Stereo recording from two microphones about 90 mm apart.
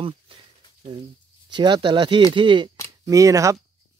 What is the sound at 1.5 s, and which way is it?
Speech, 60° right (ahead or behind).